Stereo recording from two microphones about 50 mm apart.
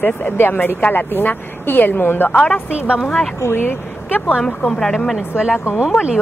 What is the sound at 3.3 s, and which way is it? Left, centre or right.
Speech, left.